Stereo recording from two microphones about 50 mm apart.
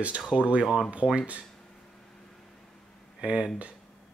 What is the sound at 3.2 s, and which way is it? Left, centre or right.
Speech, centre.